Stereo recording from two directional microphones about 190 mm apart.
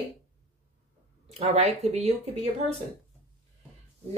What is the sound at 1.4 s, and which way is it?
Speech, 35° right (ahead or behind).